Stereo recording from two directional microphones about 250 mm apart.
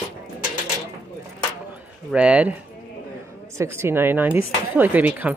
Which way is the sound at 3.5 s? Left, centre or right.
Centre.